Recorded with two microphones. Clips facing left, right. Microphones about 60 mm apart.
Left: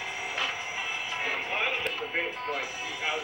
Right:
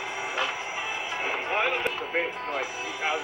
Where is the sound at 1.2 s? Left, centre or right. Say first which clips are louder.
Right 4 dB; right.